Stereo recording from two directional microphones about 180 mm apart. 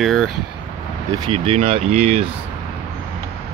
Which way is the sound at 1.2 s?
35° right (ahead or behind).